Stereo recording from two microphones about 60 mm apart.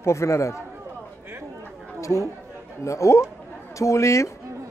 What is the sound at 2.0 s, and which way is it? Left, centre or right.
A man's voice, left.